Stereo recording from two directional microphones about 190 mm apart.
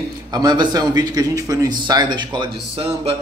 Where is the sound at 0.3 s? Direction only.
20° right (ahead or behind).